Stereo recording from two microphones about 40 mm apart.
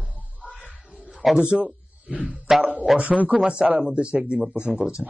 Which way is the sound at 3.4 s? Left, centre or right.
Right.